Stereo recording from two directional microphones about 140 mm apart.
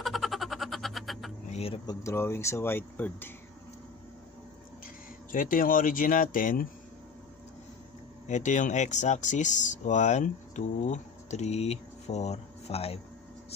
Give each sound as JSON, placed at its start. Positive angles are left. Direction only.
{"t": 0.0, "sound": "frog", "side_deg": 0}
{"t": 1.5, "sound": "speech", "side_deg": 45}
{"t": 1.9, "sound": "speech", "side_deg": 20}
{"t": 5.3, "sound": "speech", "side_deg": 75}
{"t": 8.3, "sound": "speech", "side_deg": 60}